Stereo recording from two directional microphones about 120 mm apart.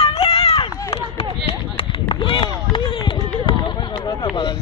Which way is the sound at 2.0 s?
45° left (ahead or behind).